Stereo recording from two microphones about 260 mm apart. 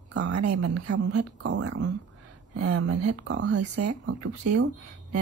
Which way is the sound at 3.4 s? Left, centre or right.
Right.